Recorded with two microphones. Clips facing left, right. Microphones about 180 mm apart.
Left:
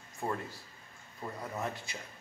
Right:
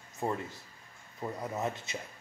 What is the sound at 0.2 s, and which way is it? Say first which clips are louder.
Speech: right 2 dB; 20° right (ahead or behind).